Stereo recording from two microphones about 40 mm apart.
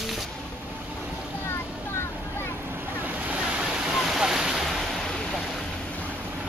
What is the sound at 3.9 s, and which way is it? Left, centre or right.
Waves, centre.